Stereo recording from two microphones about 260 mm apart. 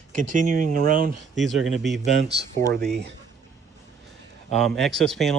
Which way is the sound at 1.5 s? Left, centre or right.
Centre.